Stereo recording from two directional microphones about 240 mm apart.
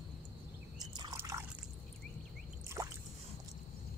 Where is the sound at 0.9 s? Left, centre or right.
Centre.